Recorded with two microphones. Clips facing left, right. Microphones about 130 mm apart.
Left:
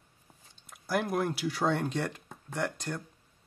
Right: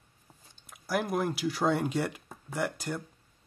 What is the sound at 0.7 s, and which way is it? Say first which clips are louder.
Speech: even; centre (ahead or behind).